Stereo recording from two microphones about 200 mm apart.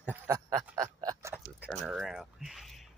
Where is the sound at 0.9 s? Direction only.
20° right (ahead or behind).